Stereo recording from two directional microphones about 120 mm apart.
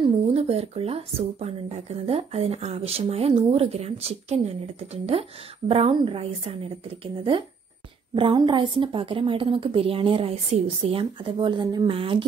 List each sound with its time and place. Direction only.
0.3 s a woman's voice: 60° right (ahead or behind)
8.1 s a woman's voice: 45° right (ahead or behind)